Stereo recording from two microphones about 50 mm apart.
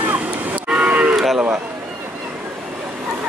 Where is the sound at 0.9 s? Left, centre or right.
Right.